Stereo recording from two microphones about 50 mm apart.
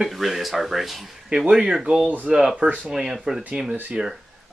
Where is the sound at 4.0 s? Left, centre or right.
Right.